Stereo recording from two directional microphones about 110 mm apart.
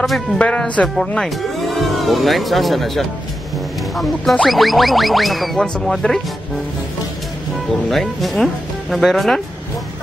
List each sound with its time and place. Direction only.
0.0 s speech: centre (ahead or behind)
7.9 s speech: centre (ahead or behind)